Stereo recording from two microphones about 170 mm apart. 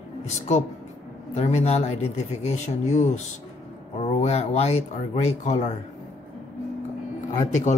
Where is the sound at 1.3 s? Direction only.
40° left (ahead or behind).